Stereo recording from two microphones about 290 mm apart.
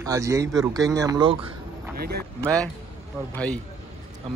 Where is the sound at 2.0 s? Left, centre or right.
Right.